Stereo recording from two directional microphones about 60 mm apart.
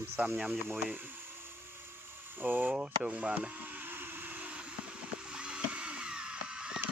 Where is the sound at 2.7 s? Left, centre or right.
Right.